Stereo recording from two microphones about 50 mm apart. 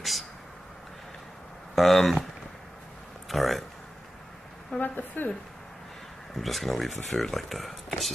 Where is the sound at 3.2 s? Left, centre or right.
Centre.